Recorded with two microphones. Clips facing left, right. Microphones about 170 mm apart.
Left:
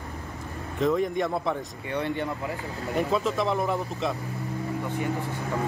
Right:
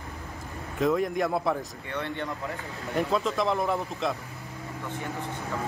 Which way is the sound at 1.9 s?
15° left (ahead or behind).